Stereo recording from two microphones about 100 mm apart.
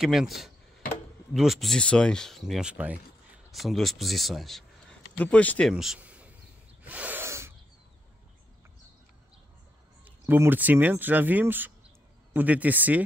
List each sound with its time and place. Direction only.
0.0 s speech: 5° right (ahead or behind)
2.7 s speech: 15° right (ahead or behind)
3.5 s speech: centre (ahead or behind)
5.2 s speech: 15° left (ahead or behind)
5.7 s speech: 5° right (ahead or behind)
5.9 s insect: 15° right (ahead or behind)
6.8 s snort: 15° right (ahead or behind)
7.2 s a sound: 25° right (ahead or behind)
10.0 s speech: 20° right (ahead or behind)